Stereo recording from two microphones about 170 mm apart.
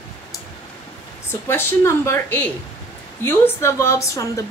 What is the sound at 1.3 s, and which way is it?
A woman's voice, 15° left (ahead or behind).